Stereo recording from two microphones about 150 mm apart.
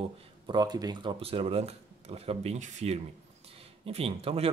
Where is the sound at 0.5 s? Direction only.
25° right (ahead or behind).